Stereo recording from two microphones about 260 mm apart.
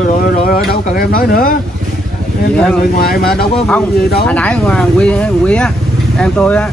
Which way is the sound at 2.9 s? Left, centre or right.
Left.